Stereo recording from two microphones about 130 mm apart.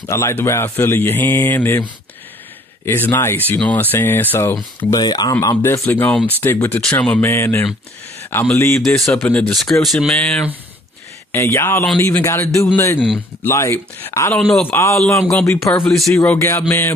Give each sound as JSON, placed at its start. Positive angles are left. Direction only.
{"t": 0.0, "sound": "speech", "side_deg": 20}
{"t": 4.9, "sound": "speech", "side_deg": 30}
{"t": 8.5, "sound": "music", "side_deg": 20}
{"t": 8.8, "sound": "speech", "side_deg": 0}
{"t": 9.6, "sound": "speech", "side_deg": 0}
{"t": 15.4, "sound": "music", "side_deg": 20}
{"t": 15.8, "sound": "speech", "side_deg": 5}
{"t": 16.3, "sound": "music", "side_deg": 20}